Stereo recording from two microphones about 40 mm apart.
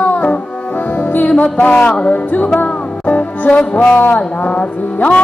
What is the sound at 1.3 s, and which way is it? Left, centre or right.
Music, left.